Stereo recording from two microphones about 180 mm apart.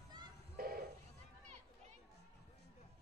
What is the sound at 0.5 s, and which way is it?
Goat, 55° right (ahead or behind).